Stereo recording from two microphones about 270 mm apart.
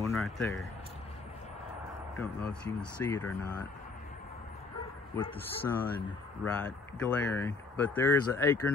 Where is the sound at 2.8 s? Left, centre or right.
Centre.